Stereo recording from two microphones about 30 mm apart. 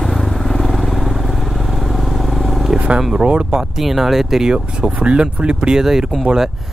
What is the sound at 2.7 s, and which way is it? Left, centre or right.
Vehicle, right.